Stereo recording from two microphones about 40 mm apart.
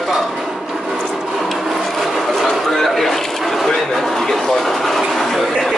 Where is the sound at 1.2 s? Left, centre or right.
Centre.